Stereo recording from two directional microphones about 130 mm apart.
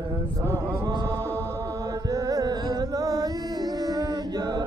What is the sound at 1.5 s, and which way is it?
Music, 25° right (ahead or behind).